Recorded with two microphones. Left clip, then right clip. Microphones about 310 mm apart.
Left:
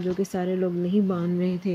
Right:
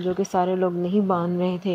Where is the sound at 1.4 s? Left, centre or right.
Centre.